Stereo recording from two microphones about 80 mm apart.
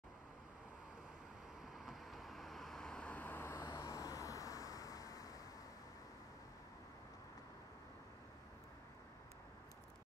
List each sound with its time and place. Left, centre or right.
1.7 s vehicle: centre; by 5.3 s left